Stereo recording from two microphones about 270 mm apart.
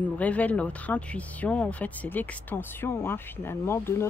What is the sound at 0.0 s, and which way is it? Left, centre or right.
Speech, centre.